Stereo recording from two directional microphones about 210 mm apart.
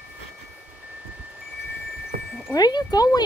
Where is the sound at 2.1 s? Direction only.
45° right (ahead or behind).